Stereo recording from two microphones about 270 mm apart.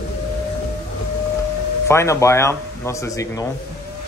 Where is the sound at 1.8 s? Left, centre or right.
Centre.